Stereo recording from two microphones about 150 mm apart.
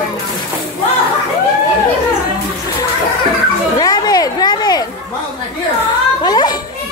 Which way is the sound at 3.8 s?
25° left (ahead or behind).